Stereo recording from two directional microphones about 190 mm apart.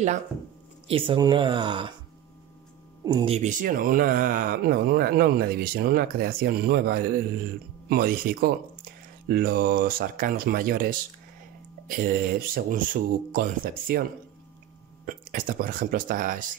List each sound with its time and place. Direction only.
0.8 s speech: 30° right (ahead or behind)
3.0 s speech: 20° right (ahead or behind)
3.3 s speech: 40° right (ahead or behind)
15.0 s speech: 45° right (ahead or behind)